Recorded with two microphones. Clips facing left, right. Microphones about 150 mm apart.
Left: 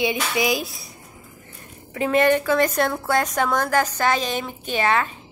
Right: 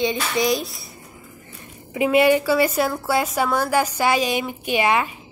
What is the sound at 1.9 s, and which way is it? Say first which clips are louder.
A woman's voice: right 2 dB; 10° right (ahead or behind).